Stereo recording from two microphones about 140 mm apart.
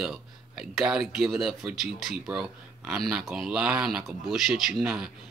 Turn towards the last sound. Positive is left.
turn(degrees=-5)  # may be behind; listen again after turning